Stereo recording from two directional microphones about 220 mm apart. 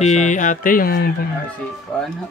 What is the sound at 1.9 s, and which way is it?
Speech, 5° left (ahead or behind).